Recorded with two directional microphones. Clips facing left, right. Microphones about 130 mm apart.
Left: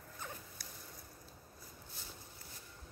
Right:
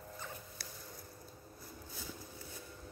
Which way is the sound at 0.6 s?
80° right.